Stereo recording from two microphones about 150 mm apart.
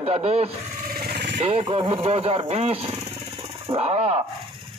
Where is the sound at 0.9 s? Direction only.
90° right.